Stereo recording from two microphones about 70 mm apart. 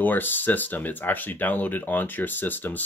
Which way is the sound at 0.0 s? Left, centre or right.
Left.